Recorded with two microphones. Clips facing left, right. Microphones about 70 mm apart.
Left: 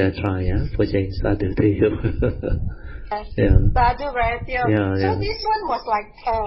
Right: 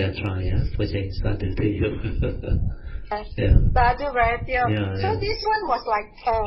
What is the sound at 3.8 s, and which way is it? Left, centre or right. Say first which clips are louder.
Speech: even; centre.